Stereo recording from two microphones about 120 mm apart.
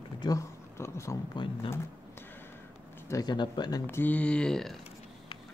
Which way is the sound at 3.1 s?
35° left (ahead or behind).